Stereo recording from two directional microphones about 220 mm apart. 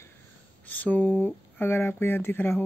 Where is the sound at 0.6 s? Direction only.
5° left (ahead or behind).